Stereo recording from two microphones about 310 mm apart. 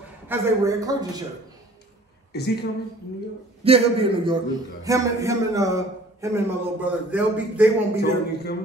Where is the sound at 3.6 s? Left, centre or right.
Centre.